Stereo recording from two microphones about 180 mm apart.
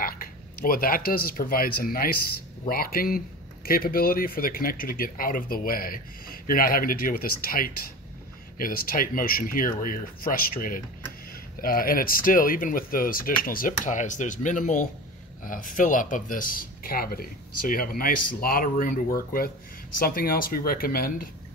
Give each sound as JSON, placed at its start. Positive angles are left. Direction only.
{"t": 0.0, "sound": "speech", "side_deg": 55}